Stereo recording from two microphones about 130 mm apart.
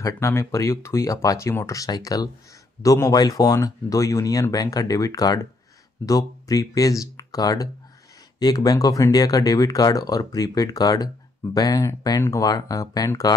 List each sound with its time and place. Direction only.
0.0 s speech: 25° left (ahead or behind)